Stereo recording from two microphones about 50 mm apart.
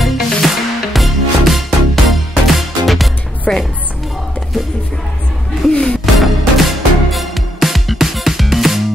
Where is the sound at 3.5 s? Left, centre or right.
Centre.